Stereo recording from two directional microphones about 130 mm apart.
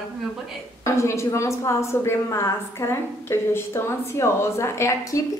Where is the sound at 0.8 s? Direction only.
20° left (ahead or behind).